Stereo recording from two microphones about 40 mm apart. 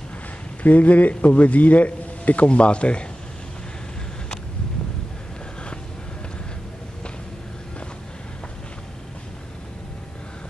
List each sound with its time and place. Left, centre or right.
0.6 s a man's voice: left